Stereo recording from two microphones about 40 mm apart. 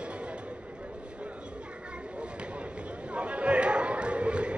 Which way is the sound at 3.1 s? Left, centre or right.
Right.